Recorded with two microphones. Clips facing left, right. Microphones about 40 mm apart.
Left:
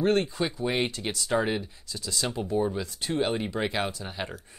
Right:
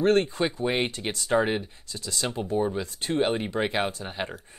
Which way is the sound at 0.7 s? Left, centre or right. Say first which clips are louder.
Even; right.